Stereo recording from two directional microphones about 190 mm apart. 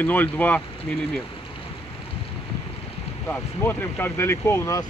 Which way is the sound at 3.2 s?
10° left (ahead or behind).